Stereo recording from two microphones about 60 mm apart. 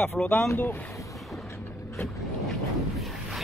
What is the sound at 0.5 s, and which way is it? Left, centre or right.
Speech, left.